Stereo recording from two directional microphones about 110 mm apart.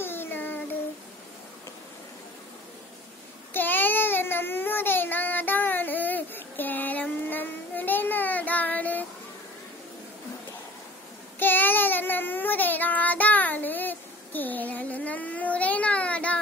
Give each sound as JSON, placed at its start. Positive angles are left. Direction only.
{"t": 0.0, "sound": "a sound", "side_deg": 20}
{"t": 3.5, "sound": "child singing", "side_deg": 15}
{"t": 11.3, "sound": "child singing", "side_deg": 20}